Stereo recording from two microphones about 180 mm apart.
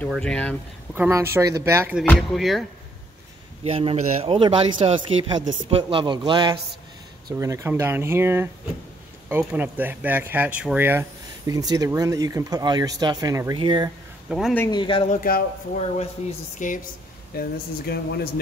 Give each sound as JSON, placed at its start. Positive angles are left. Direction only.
{"t": 0.0, "sound": "speech", "side_deg": 5}
{"t": 0.9, "sound": "speech", "side_deg": -10}
{"t": 2.0, "sound": "speech", "side_deg": 0}
{"t": 3.6, "sound": "a man's voice", "side_deg": -30}
{"t": 14.3, "sound": "speech", "side_deg": -5}
{"t": 14.7, "sound": "speech", "side_deg": 25}
{"t": 15.0, "sound": "a man's voice", "side_deg": 50}
{"t": 16.5, "sound": "a man's voice", "side_deg": 45}
{"t": 17.3, "sound": "speech", "side_deg": 60}